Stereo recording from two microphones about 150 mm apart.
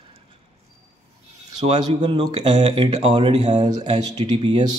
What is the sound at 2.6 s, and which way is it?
Speech, 35° right (ahead or behind).